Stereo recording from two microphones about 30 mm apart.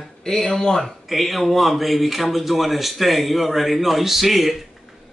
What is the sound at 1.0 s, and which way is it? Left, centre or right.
Speech, centre.